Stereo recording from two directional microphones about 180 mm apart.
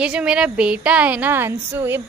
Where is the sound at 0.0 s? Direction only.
5° right (ahead or behind).